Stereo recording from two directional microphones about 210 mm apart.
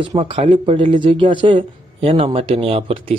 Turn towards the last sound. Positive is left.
turn(degrees=-25)  # may be behind; listen again after turning